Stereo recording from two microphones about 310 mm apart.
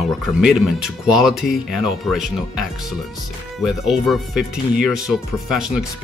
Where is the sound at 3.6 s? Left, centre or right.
Centre.